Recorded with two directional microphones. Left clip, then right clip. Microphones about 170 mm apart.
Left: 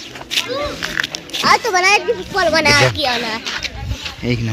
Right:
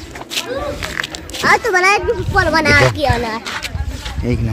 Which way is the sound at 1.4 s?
60° right (ahead or behind).